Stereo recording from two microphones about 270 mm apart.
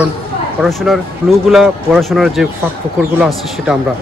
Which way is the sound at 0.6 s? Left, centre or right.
Centre.